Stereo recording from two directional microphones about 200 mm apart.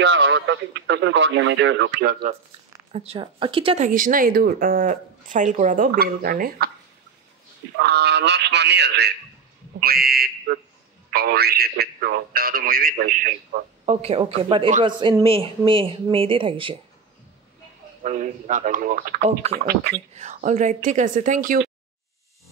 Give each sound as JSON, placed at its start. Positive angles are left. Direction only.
{"t": 0.0, "sound": "speech", "side_deg": -70}
{"t": 2.9, "sound": "speech", "side_deg": -30}
{"t": 7.8, "sound": "speech", "side_deg": -55}
{"t": 13.8, "sound": "speech", "side_deg": -30}
{"t": 18.0, "sound": "speech", "side_deg": -35}
{"t": 20.2, "sound": "speech", "side_deg": -35}